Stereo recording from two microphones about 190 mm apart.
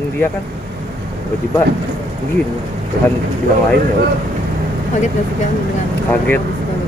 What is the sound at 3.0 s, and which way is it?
Speech, 55° right (ahead or behind).